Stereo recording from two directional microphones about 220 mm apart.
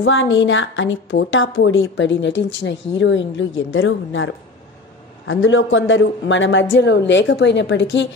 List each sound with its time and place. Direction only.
0.0 s speech: 60° left (ahead or behind)